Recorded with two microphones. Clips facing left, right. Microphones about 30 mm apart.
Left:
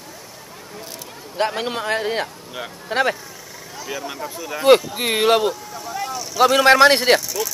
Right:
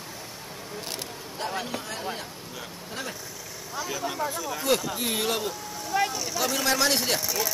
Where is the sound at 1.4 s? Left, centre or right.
Left.